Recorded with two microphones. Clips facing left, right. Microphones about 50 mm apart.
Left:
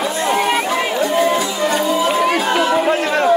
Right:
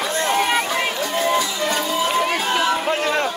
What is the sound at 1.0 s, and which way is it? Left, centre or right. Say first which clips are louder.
Music: left 6 dB; left.